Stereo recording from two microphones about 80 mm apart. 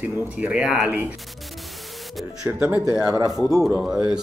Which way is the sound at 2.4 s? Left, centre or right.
Centre.